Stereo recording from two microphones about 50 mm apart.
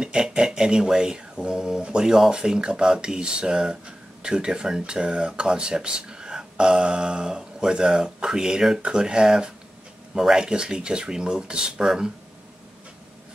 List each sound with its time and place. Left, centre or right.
0.0 s speech: centre